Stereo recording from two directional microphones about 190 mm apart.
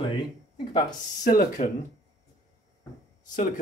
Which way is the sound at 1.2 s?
45° left (ahead or behind).